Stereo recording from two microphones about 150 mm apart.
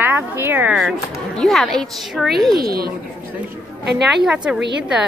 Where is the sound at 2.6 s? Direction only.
90° right.